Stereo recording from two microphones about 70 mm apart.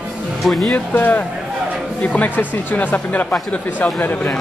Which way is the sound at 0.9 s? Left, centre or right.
Left.